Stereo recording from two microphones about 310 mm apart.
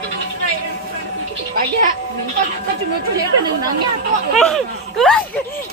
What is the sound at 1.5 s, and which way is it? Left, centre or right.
Speech, right.